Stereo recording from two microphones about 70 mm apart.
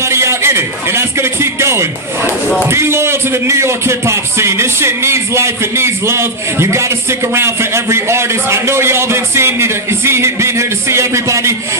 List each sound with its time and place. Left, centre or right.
0.0 s a man's voice: right